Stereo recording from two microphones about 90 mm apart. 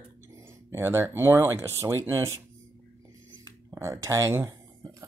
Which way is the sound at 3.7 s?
35° right (ahead or behind).